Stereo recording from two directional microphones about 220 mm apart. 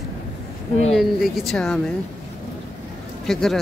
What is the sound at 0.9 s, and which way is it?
Speech, centre (ahead or behind).